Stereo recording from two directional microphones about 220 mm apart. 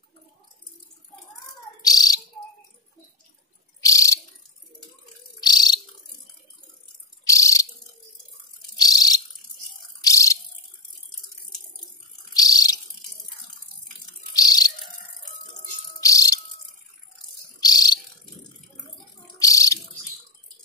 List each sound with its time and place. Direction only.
1.8 s bird: 15° left (ahead or behind)
3.8 s a sound: 15° left (ahead or behind)
5.4 s bird: 20° left (ahead or behind)
7.2 s bird: 15° left (ahead or behind)
8.7 s a sound: 15° left (ahead or behind)
12.4 s bird: 15° left (ahead or behind)
14.3 s bird: 15° left (ahead or behind)
16.0 s music: 15° left (ahead or behind)
17.6 s bird: 15° left (ahead or behind)
19.3 s a sound: 15° left (ahead or behind)